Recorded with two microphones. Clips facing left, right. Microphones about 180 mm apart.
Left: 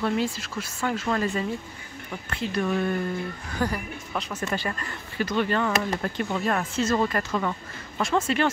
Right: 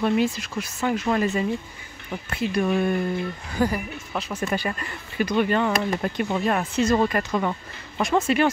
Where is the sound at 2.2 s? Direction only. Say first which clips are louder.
Right 3 dB; 10° right (ahead or behind).